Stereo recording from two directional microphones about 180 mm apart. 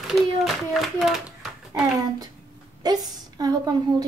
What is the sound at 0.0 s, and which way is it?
Speech, centre (ahead or behind).